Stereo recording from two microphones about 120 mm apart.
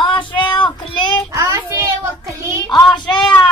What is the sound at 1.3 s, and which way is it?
Child singing, 25° right (ahead or behind).